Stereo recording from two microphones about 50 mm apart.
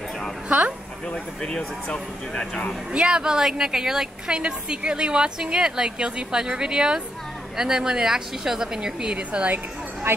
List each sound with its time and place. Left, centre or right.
0.5 s a woman's voice: right
1.0 s speech: centre
2.9 s a woman's voice: centre
10.1 s speech: right